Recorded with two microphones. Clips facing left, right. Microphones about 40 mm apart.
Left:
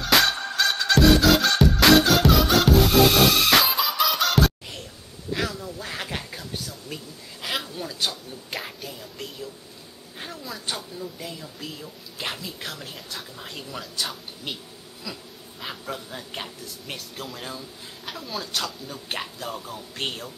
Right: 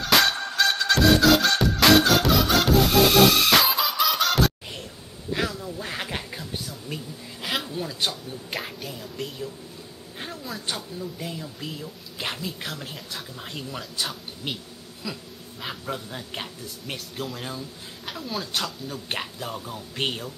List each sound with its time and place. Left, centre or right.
0.0 s music: centre
5.3 s quack: centre
7.4 s a sound: centre
8.0 s speech: centre
15.6 s speech: centre